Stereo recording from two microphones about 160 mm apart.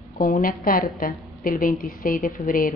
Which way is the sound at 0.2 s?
60° left (ahead or behind).